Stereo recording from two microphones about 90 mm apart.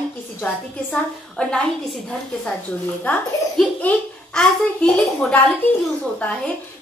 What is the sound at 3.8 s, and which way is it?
Speech, 15° left (ahead or behind).